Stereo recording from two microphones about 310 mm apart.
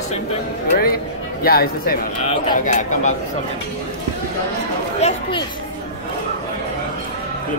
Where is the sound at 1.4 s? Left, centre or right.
Left.